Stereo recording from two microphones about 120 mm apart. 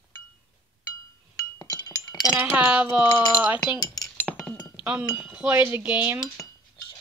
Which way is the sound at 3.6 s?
35° left (ahead or behind).